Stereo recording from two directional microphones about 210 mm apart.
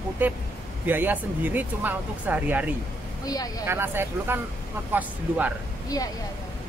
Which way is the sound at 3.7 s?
10° right (ahead or behind).